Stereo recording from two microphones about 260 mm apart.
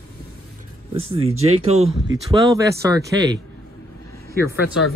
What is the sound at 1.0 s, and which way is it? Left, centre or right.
Speech, right.